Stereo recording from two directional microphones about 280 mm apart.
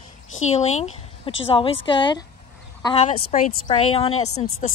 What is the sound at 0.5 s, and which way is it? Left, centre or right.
Speech, left.